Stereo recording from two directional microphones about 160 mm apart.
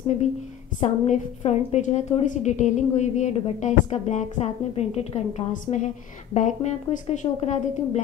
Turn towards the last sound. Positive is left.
turn(degrees=45)  # may be behind; listen again after turning